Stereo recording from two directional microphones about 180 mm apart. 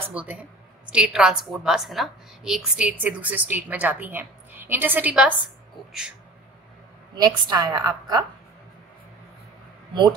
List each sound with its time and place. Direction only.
0.1 s a woman's voice: 5° right (ahead or behind)
7.2 s a woman's voice: 20° right (ahead or behind)